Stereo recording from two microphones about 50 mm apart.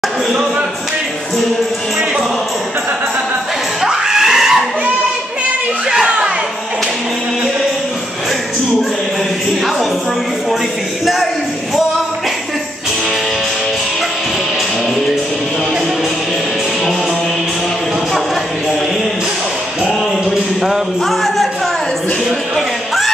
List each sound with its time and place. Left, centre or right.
3.8 s screaming: centre
6.0 s music: centre
20.6 s a sound: centre